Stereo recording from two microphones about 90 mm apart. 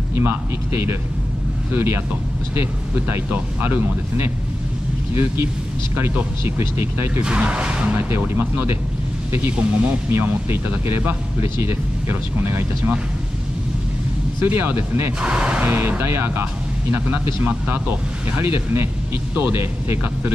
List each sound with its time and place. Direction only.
0.1 s speech: 25° right (ahead or behind)
7.2 s speech: 15° right (ahead or behind)
7.9 s speech: 25° right (ahead or behind)
14.4 s speech: 25° right (ahead or behind)
15.1 s speech: 10° right (ahead or behind)
15.6 s speech: 25° right (ahead or behind)